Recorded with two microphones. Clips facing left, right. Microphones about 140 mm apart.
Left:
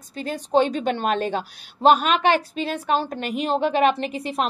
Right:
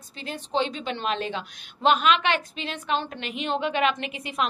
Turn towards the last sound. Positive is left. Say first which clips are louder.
# left 4 dB
turn(degrees=35)  # may be behind; listen again after turning